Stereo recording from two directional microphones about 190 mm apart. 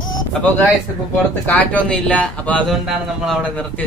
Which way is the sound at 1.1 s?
10° left (ahead or behind).